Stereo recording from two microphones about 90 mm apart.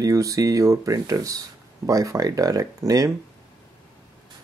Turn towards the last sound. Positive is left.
turn(degrees=-40)  # may be behind; listen again after turning